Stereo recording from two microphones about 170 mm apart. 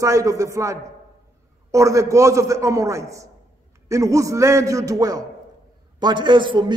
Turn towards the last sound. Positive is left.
turn(degrees=-25)  # may be behind; listen again after turning